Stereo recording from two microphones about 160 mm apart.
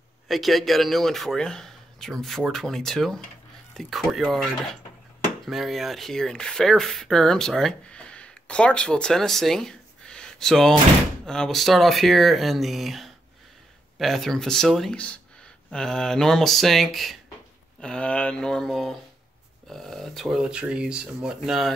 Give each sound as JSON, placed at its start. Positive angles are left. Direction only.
{"t": 0.3, "sound": "speech", "side_deg": 0}